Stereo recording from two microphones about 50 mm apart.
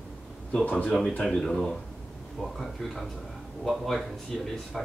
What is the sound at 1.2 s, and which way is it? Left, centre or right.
Speech, centre.